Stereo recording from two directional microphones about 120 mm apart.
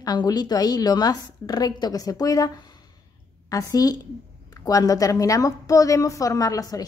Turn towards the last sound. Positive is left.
turn(degrees=30)  # may be behind; listen again after turning